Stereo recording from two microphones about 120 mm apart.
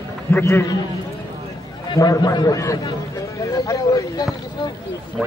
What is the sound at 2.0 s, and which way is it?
Speech, 30° left (ahead or behind).